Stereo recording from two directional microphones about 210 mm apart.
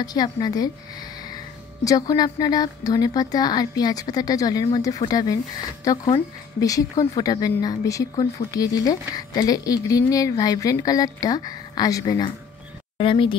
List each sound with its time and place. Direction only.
0.0 s speech: 20° left (ahead or behind)
1.9 s speech: 20° left (ahead or behind)